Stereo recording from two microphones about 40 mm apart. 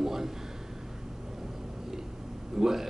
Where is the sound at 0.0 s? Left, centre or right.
Centre.